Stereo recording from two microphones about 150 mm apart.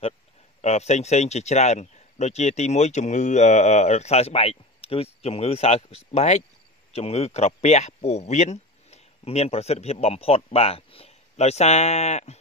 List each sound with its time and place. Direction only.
0.6 s speech: 45° left (ahead or behind)